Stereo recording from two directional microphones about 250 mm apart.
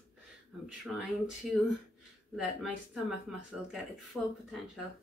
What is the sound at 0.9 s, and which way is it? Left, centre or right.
Speech, centre.